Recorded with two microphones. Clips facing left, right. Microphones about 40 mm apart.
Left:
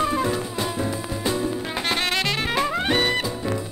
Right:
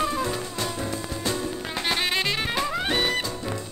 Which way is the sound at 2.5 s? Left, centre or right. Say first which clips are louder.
Left 6 dB; centre.